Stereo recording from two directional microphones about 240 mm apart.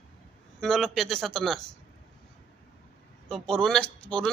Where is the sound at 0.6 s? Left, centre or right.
Centre.